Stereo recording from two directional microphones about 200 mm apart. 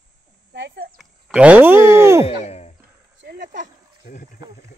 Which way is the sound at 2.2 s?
35° left (ahead or behind).